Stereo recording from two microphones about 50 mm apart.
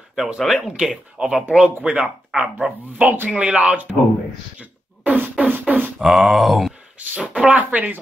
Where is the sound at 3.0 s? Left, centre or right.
Right.